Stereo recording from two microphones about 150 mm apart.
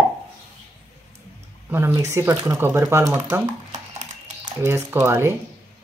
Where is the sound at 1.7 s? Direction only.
15° right (ahead or behind).